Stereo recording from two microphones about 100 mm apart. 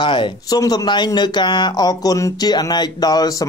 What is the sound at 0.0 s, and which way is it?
Speech, 50° left (ahead or behind).